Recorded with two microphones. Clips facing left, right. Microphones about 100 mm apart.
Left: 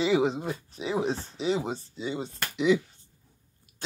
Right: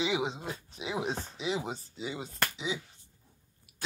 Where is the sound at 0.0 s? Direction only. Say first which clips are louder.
Left 7 dB; 45° left (ahead or behind).